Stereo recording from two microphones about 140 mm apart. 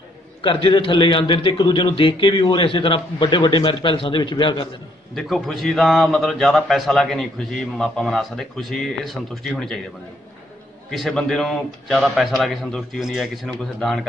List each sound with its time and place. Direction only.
0.4 s a man's voice: 35° left (ahead or behind)
5.1 s a man's voice: centre (ahead or behind)
10.9 s a man's voice: centre (ahead or behind)